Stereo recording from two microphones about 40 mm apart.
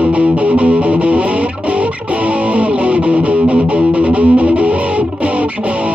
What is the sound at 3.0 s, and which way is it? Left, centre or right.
Music, right.